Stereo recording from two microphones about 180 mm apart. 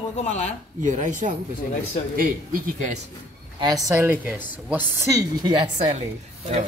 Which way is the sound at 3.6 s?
20° right (ahead or behind).